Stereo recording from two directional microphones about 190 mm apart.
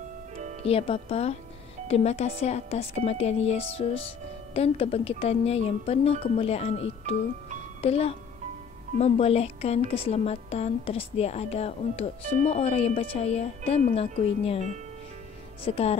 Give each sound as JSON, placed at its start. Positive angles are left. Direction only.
{"t": 0.4, "sound": "music", "side_deg": -40}
{"t": 0.7, "sound": "a woman's voice", "side_deg": 30}
{"t": 15.6, "sound": "a woman's voice", "side_deg": 30}